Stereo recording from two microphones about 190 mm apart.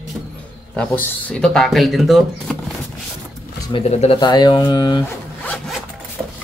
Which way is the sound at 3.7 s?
30° left (ahead or behind).